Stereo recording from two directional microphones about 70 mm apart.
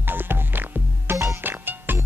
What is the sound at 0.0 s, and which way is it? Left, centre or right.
Music, right.